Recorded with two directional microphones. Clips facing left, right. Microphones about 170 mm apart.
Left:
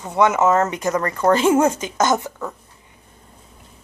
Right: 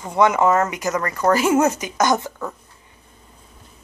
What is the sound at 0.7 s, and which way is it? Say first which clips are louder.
Speech: left 2 dB; 30° left (ahead or behind).